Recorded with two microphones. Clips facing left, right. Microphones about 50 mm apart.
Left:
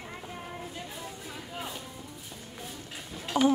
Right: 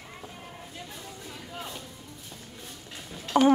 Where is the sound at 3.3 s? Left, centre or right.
Right.